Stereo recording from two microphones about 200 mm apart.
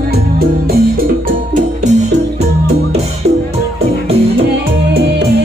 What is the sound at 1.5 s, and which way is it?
Music, 35° right (ahead or behind).